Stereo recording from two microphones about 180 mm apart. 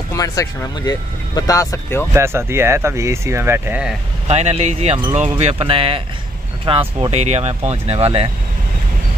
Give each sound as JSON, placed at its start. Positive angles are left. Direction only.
{"t": 0.1, "sound": "speech", "side_deg": 20}
{"t": 2.1, "sound": "speech", "side_deg": -15}
{"t": 4.3, "sound": "speech", "side_deg": -35}